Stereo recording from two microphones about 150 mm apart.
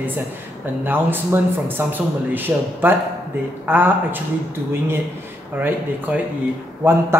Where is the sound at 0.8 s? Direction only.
15° right (ahead or behind).